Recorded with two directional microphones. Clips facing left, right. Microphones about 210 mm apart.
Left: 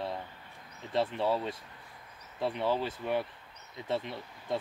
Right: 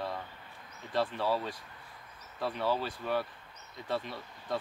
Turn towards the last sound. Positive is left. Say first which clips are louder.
# left 2 dB
turn(degrees=20)  # may be behind; listen again after turning